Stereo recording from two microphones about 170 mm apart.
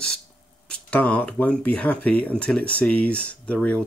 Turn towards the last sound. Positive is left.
turn(degrees=5)  # may be behind; listen again after turning